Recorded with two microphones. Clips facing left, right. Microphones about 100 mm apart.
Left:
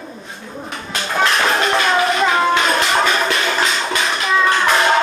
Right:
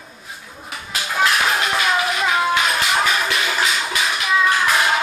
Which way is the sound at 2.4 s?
5° right (ahead or behind).